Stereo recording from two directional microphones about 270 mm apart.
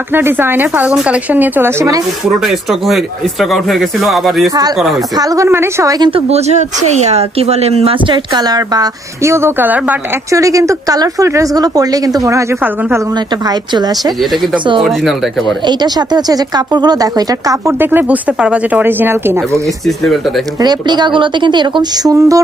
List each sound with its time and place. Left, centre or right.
0.1 s a woman's voice: centre
5.1 s a woman's voice: centre
14.8 s a man's voice: centre
15.6 s a woman's voice: centre
20.6 s a woman's voice: centre